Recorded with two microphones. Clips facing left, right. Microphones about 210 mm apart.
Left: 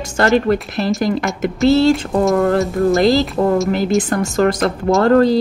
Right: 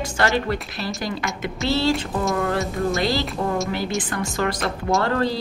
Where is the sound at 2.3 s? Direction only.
45° left (ahead or behind).